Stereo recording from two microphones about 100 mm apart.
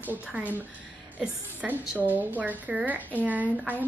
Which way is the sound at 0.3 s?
15° right (ahead or behind).